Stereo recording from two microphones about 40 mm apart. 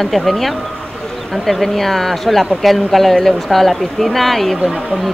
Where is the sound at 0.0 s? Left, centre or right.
Centre.